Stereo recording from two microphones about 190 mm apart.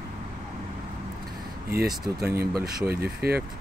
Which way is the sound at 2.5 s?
55° right (ahead or behind).